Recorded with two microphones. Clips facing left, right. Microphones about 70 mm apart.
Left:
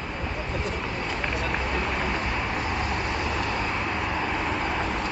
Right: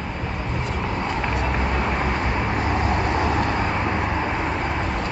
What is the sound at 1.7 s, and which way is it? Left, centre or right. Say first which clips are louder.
Vehicle: right 4 dB; centre.